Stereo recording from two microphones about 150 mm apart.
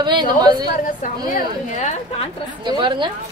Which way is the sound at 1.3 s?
55° left (ahead or behind).